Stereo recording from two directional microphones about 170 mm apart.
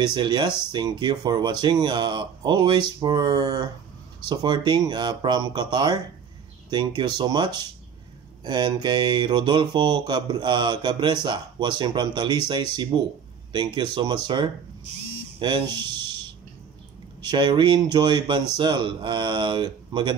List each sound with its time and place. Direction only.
0.0 s speech: 25° right (ahead or behind)
7.0 s speech: 25° right (ahead or behind)
15.3 s a sound: 30° right (ahead or behind)
17.2 s speech: 25° right (ahead or behind)